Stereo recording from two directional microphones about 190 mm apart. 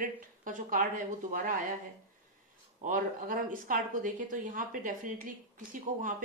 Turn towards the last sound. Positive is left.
turn(degrees=-45)  # may be behind; listen again after turning